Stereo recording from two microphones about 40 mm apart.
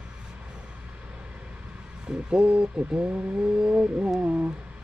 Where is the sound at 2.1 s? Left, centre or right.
Centre.